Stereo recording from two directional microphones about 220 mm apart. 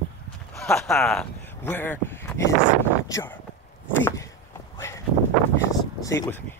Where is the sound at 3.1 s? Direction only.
15° left (ahead or behind).